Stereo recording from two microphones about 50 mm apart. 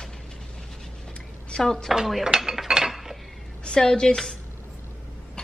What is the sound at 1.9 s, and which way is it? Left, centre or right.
Dishes, centre.